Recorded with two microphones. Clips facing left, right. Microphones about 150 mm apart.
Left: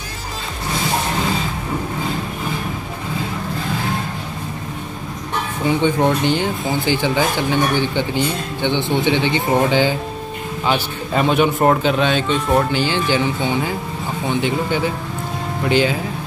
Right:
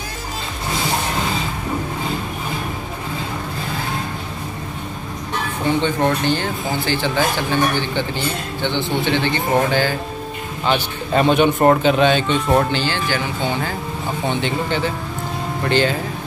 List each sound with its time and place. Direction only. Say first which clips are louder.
5.8 s speech: left 3 dB; 15° left (ahead or behind)
10.6 s a man's voice: even; 5° left (ahead or behind)
12.8 s speech: left 3 dB; 15° left (ahead or behind)
14.3 s a man's voice: left 4 dB; 5° left (ahead or behind)